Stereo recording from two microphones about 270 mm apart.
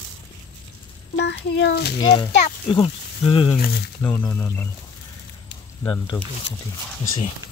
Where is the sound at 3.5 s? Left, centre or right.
Left.